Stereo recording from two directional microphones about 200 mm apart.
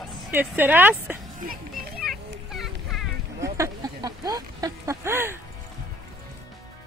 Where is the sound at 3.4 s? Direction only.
15° right (ahead or behind).